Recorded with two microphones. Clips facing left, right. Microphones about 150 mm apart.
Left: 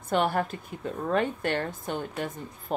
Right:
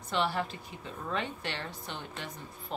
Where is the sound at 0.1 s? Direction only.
50° left (ahead or behind).